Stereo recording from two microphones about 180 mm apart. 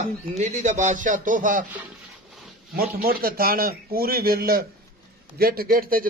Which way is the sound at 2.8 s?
55° right (ahead or behind).